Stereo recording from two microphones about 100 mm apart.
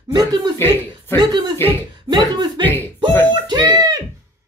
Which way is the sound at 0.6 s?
25° left (ahead or behind).